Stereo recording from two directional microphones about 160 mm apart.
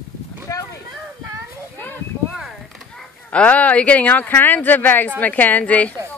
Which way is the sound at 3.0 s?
10° left (ahead or behind).